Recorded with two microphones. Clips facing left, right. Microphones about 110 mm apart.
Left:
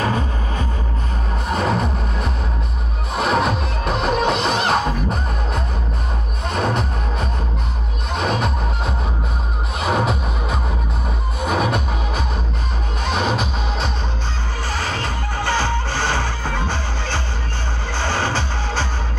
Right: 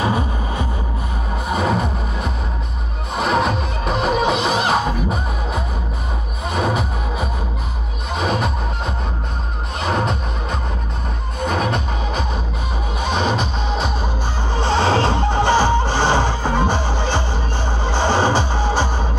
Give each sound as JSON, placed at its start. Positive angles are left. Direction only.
{"t": 0.0, "sound": "vehicle", "side_deg": -10}
{"t": 1.5, "sound": "music", "side_deg": -5}
{"t": 14.6, "sound": "music", "side_deg": -30}